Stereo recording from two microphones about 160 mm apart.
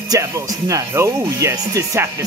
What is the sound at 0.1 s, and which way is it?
Speech, 20° right (ahead or behind).